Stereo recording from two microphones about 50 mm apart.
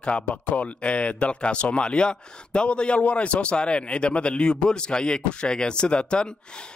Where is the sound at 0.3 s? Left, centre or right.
Left.